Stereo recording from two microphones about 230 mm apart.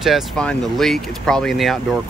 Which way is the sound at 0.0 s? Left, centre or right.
Centre.